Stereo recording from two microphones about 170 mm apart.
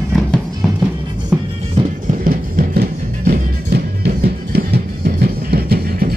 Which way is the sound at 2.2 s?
55° right (ahead or behind).